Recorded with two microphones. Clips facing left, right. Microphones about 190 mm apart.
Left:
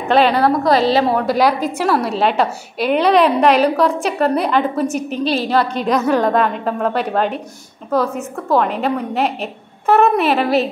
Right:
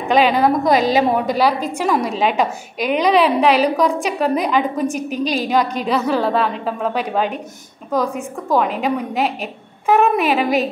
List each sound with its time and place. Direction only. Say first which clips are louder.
0.1 s a woman's voice: left 1 dB; 10° right (ahead or behind)
1.3 s a woman's voice: left 2 dB; 10° left (ahead or behind)
1.7 s a woman's voice: left 1 dB; 10° right (ahead or behind)
8.5 s a woman's voice: left 1 dB; 5° right (ahead or behind)